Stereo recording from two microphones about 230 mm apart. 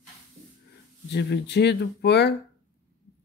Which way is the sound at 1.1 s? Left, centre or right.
Left.